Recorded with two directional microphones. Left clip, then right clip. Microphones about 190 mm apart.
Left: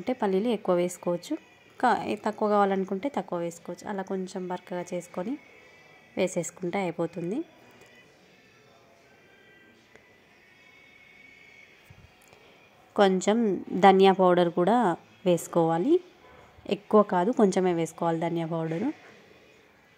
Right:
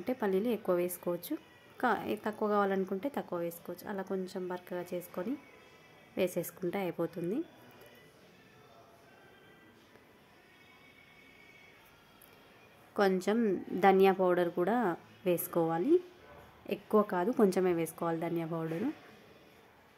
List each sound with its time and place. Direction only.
0.0 s a woman's voice: 10° left (ahead or behind)
12.9 s a woman's voice: 20° left (ahead or behind)
17.0 s a woman's voice: 15° left (ahead or behind)